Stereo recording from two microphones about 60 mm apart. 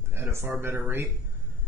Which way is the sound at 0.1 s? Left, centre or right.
Right.